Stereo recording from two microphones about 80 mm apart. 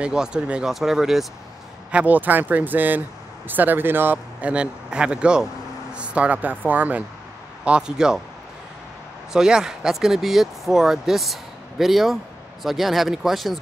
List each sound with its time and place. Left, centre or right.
0.0 s speech: centre
1.9 s speech: centre
9.3 s speech: centre